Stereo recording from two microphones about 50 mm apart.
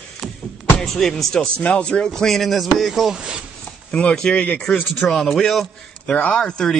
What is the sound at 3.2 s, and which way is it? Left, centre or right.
Speech, centre.